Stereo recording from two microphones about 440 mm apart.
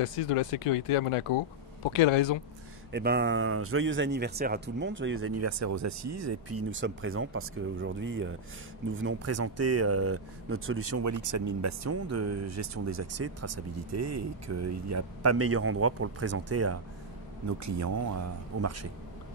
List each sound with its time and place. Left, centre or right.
0.9 s speech: left
2.9 s speech: right